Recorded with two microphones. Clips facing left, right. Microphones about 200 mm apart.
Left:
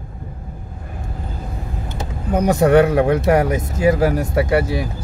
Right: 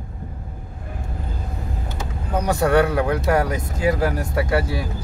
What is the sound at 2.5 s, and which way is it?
Speech, 20° left (ahead or behind).